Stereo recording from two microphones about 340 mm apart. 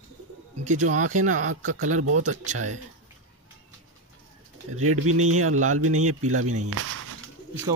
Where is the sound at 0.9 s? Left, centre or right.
Right.